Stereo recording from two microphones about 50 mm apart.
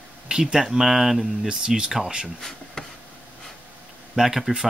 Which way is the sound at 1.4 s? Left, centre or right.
Centre.